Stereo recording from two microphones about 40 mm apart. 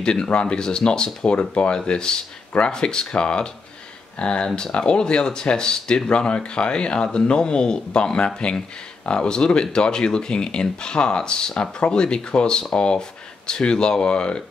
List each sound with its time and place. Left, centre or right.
0.0 s speech: left
4.5 s speech: centre
4.7 s speech: left